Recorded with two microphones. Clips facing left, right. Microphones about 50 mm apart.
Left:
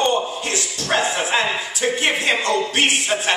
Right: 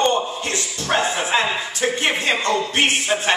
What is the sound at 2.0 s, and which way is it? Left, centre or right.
Speech, centre.